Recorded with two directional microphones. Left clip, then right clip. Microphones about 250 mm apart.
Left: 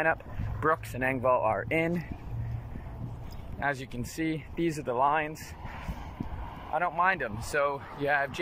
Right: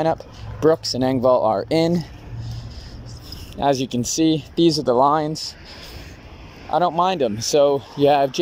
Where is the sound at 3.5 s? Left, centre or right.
Right.